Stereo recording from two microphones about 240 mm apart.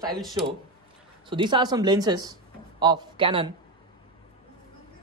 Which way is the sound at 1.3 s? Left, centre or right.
Centre.